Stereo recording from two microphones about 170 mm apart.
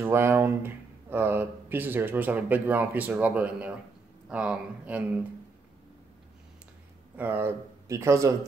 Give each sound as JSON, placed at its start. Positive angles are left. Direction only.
{"t": 0.0, "sound": "speech", "side_deg": -15}
{"t": 7.2, "sound": "speech", "side_deg": -10}